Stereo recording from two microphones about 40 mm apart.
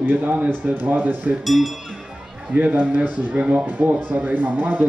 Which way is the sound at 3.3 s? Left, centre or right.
Right.